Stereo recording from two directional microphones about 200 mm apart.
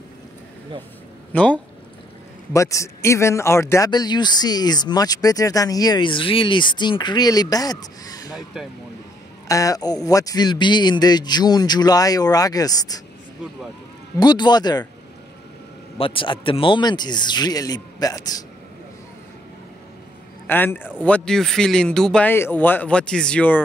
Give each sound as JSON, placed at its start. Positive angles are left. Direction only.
{"t": 1.3, "sound": "speech", "side_deg": 5}
{"t": 9.5, "sound": "speech", "side_deg": 15}
{"t": 14.1, "sound": "speech", "side_deg": 20}
{"t": 16.0, "sound": "speech", "side_deg": 25}
{"t": 20.4, "sound": "speech", "side_deg": 10}